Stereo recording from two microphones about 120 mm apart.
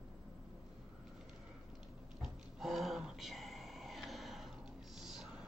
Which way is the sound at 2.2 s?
Centre (ahead or behind).